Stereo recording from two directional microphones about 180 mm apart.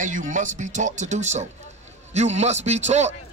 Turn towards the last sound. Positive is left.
turn(degrees=-40)  # may be behind; listen again after turning